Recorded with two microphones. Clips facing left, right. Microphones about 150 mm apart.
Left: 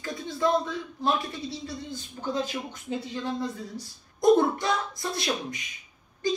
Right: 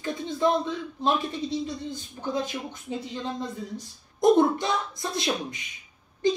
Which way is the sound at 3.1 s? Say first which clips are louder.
Left 1 dB; 20° right (ahead or behind).